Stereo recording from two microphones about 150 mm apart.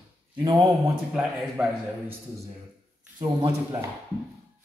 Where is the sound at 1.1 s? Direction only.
5° right (ahead or behind).